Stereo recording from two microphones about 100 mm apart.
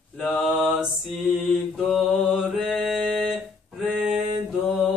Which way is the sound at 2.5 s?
Centre (ahead or behind).